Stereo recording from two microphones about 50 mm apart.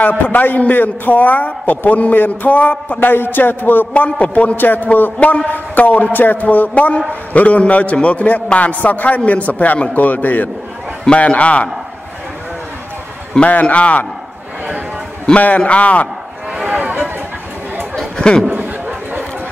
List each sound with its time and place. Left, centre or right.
0.3 s a man's voice: left
3.9 s a man's voice: left
4.6 s a man's voice: left
13.3 s a man's voice: left
15.3 s a man's voice: left
16.6 s a sound: right
18.1 s chatter: centre
18.5 s chatter: right